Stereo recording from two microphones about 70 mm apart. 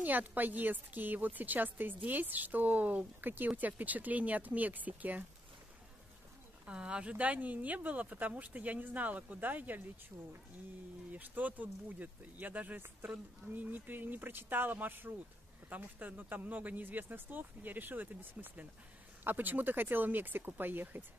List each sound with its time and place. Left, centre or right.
0.0 s a woman's voice: right
6.6 s a woman's voice: centre
11.1 s a woman's voice: right